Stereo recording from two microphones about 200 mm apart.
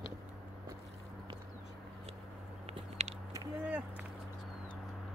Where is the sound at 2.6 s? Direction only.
30° right (ahead or behind).